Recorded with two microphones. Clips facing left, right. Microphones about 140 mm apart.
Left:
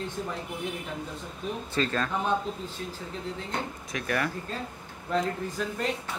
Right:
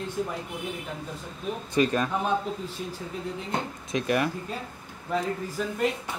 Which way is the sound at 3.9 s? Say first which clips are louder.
Right 5 dB; 20° right (ahead or behind).